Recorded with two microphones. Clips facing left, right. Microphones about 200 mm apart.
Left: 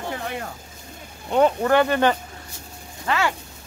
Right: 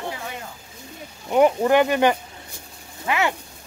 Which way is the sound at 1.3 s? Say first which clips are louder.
Right 1 dB; 15° right (ahead or behind).